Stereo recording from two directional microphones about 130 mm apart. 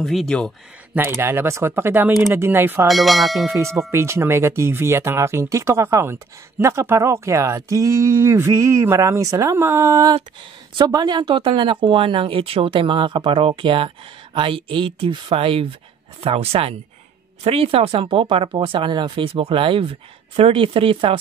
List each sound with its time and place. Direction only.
0.0 s bell: centre (ahead or behind)
0.9 s speech: 15° right (ahead or behind)
2.9 s bell: centre (ahead or behind)
3.9 s speech: 20° right (ahead or behind); by 21.2 s 45° right (ahead or behind)